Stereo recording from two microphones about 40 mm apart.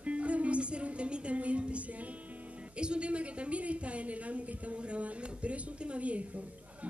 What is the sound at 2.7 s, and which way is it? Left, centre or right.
A woman's voice, right.